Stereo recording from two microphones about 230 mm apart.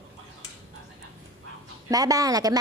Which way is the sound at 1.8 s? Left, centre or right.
Centre.